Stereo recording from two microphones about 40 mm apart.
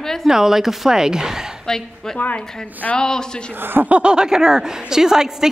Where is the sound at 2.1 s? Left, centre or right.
Left.